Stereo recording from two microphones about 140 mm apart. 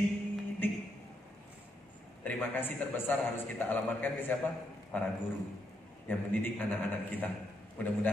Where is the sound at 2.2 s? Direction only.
15° left (ahead or behind).